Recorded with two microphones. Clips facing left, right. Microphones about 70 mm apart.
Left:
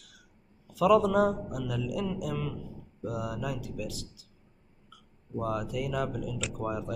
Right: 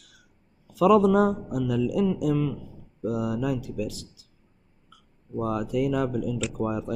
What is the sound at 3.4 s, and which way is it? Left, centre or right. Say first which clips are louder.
Speech: right 7 dB; right.